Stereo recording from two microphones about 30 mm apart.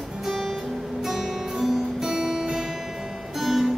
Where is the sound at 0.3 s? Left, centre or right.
Centre.